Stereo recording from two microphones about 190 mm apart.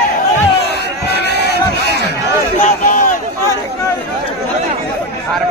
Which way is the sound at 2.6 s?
45° left (ahead or behind).